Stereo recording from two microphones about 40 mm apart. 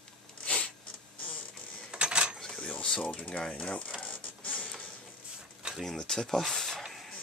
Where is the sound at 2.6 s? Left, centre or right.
Left.